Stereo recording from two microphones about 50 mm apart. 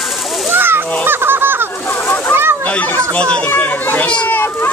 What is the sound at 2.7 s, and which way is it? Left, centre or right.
A child's voice, left.